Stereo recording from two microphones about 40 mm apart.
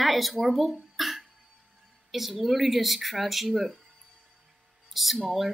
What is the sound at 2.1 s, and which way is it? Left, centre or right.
Speech, centre.